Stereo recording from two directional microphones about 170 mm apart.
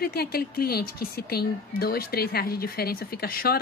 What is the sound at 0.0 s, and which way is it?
Speech, 65° left (ahead or behind).